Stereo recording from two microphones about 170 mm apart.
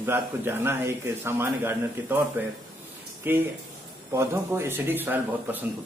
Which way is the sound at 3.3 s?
10° right (ahead or behind).